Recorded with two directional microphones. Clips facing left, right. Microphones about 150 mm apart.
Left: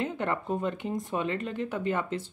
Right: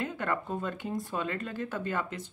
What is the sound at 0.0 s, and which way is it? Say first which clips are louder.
Speech: left 2 dB; 25° left (ahead or behind).